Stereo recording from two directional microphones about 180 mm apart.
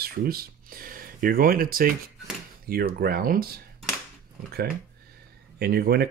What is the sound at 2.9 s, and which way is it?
Speech, 55° right (ahead or behind).